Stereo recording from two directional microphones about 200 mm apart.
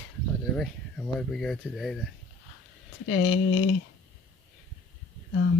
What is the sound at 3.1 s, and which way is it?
Speech, 80° left.